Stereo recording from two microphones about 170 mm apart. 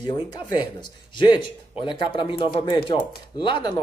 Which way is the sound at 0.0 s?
25° left (ahead or behind).